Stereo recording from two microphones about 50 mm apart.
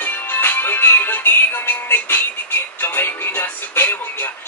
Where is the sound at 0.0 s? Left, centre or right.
Left.